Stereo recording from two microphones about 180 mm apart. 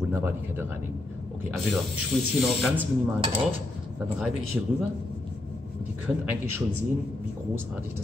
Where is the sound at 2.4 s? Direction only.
5° right (ahead or behind).